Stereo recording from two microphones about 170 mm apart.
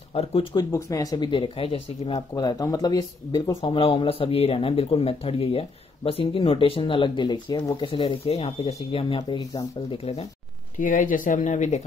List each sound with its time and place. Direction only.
0.1 s speech: 35° left (ahead or behind)
0.6 s speech: 20° left (ahead or behind)
2.3 s speech: 20° left (ahead or behind); by 10.2 s 35° left (ahead or behind)
10.8 s speech: 50° left (ahead or behind)